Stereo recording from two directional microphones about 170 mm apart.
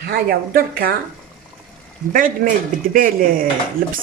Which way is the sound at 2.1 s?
55° right (ahead or behind).